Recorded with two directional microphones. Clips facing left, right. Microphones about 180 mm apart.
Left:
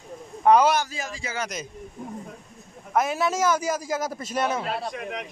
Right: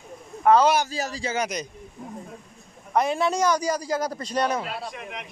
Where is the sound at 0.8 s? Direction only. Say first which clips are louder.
Right 5 dB; 35° right (ahead or behind).